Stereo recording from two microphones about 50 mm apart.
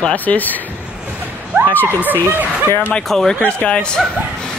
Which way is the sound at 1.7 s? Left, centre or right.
Left.